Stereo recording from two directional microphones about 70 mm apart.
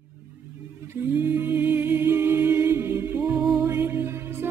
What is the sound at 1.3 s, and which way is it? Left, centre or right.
Music, right.